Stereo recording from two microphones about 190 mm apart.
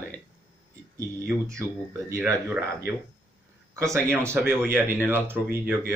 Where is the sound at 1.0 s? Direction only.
15° right (ahead or behind).